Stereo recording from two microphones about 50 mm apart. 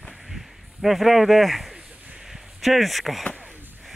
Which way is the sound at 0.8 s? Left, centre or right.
Centre.